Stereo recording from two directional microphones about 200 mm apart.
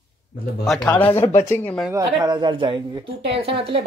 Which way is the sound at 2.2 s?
20° right (ahead or behind).